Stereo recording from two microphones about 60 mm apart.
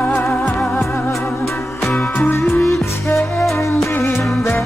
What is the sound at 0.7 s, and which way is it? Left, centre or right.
Music, left.